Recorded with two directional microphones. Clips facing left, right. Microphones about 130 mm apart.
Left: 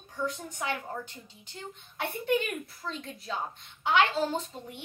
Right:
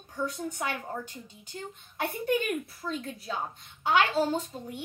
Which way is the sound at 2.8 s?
10° right (ahead or behind).